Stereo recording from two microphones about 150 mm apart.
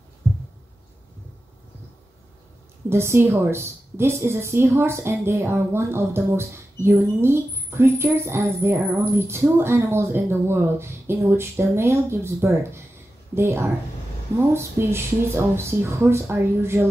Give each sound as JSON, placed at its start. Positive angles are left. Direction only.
{"t": 2.9, "sound": "a woman's voice", "side_deg": -15}